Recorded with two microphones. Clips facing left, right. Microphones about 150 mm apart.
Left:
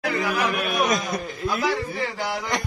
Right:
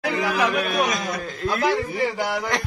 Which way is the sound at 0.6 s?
5° left (ahead or behind).